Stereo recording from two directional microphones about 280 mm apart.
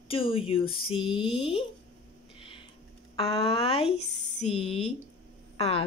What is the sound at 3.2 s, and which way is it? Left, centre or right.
Speech, centre.